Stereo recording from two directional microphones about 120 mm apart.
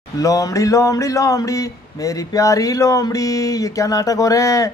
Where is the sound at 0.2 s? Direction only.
30° left (ahead or behind).